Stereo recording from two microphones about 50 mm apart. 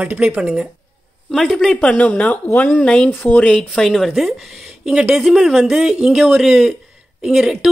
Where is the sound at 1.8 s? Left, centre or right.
Left.